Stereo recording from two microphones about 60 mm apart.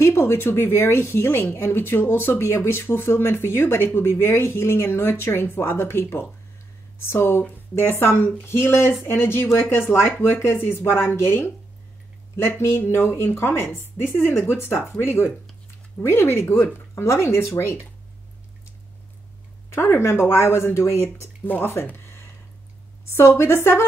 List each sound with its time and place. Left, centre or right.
0.0 s speech: left
16.9 s speech: left
19.7 s speech: left
21.9 s a sound: left
23.0 s speech: left